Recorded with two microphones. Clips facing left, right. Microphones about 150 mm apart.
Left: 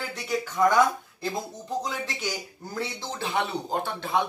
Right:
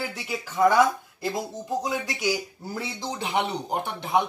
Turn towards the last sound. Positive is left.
turn(degrees=-20)  # may be behind; listen again after turning